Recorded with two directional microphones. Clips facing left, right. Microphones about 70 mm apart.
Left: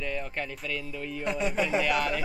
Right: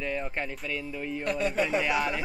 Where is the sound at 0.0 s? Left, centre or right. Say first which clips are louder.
Right 2 dB; right.